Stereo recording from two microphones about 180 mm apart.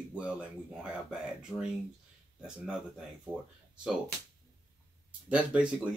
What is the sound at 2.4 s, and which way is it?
Speech, 5° right (ahead or behind).